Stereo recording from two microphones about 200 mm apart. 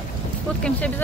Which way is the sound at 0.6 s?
5° left (ahead or behind).